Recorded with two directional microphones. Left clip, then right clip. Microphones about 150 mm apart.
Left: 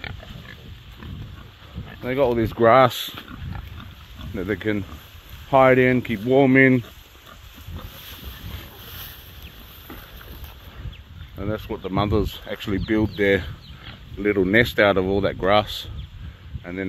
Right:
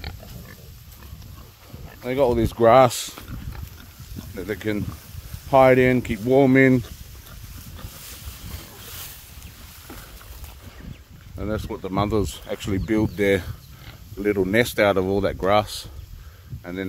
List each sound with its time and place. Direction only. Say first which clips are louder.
2.0 s speech: even; 45° right (ahead or behind)
4.4 s speech: left 2 dB; 50° right (ahead or behind)
11.3 s a sound: even; 30° right (ahead or behind)
11.9 s speech: even; 20° right (ahead or behind)
12.3 s speech: right 1 dB; 50° right (ahead or behind)
12.6 s speech: left 1 dB; 20° right (ahead or behind)